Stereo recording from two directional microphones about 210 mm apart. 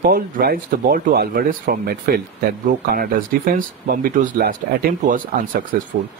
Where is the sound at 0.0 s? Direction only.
45° right (ahead or behind).